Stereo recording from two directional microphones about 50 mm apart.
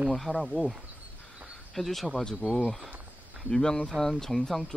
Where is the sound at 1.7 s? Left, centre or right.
Centre.